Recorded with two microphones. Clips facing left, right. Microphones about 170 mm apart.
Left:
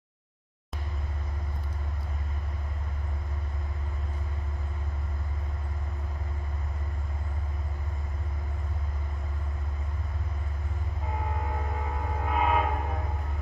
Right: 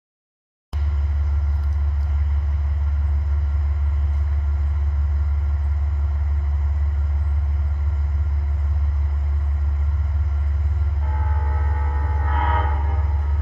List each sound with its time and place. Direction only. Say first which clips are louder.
12.2 s train: even; 10° left (ahead or behind)